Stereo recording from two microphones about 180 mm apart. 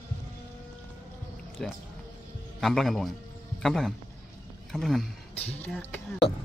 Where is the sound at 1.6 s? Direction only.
Centre (ahead or behind).